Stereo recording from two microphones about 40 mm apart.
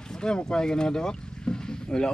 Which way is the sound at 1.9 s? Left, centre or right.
Left.